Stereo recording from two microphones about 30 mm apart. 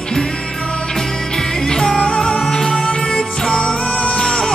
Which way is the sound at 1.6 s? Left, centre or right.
Left.